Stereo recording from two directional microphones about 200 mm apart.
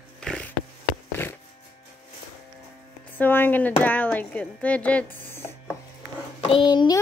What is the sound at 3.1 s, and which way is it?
Speech, 10° left (ahead or behind).